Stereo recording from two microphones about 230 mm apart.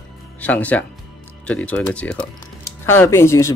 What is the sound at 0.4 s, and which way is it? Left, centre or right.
Speech, centre.